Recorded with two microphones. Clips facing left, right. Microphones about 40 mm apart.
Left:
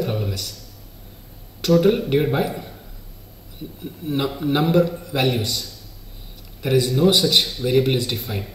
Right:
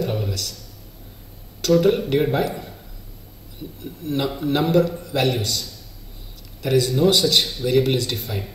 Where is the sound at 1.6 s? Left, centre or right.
Centre.